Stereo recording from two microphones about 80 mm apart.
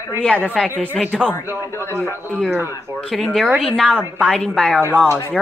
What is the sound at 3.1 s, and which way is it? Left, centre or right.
A woman's voice, centre.